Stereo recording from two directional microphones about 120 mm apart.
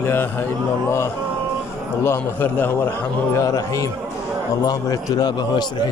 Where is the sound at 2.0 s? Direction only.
20° left (ahead or behind).